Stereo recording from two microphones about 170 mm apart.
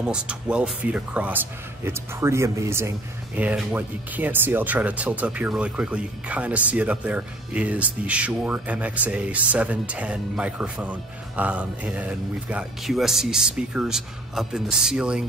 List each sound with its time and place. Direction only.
0.0 s speech: 5° right (ahead or behind)